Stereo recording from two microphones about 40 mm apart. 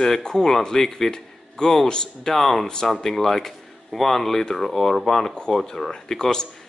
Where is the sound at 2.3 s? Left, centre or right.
Centre.